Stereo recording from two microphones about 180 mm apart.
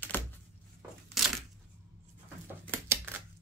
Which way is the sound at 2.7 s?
15° right (ahead or behind).